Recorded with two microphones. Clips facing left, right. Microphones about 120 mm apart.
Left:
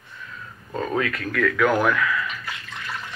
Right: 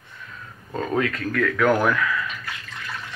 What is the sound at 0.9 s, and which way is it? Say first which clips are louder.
Speech: right 2 dB; 35° right (ahead or behind).